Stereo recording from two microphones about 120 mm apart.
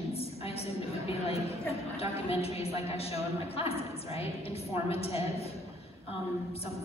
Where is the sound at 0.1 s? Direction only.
55° left (ahead or behind).